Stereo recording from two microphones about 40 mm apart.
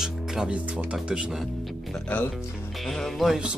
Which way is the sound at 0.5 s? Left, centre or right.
Right.